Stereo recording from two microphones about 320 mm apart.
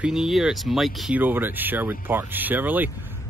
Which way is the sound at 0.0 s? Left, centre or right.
Centre.